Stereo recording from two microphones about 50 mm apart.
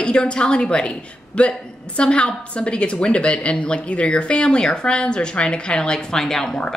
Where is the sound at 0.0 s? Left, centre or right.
Left.